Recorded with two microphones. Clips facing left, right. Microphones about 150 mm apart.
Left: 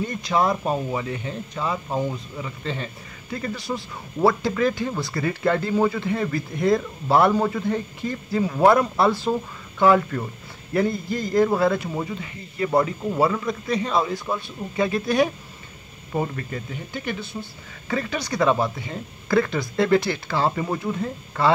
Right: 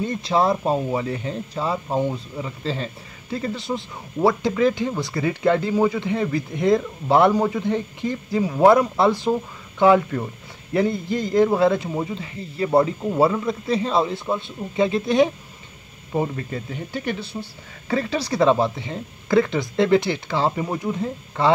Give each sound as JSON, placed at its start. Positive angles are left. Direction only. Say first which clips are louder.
{"t": 0.0, "sound": "speech", "louder": "right 2 dB", "side_deg": -30}